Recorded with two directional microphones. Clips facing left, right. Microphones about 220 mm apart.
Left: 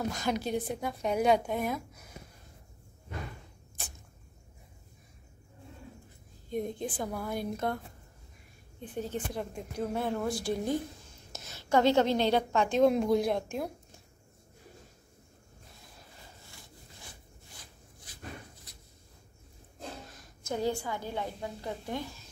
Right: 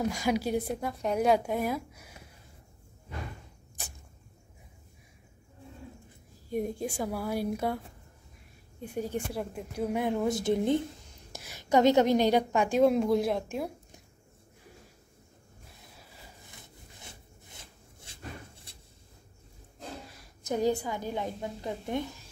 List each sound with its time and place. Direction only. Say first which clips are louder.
0.1 s a woman's voice: right 3 dB; 10° right (ahead or behind)
6.5 s a woman's voice: right 2 dB; 10° right (ahead or behind)
8.8 s a woman's voice: right 2 dB; 10° right (ahead or behind)
12.8 s speech: even; centre (ahead or behind)
16.4 s rub: right 1 dB; 20° right (ahead or behind)
20.4 s a woman's voice: right 4 dB; 15° right (ahead or behind)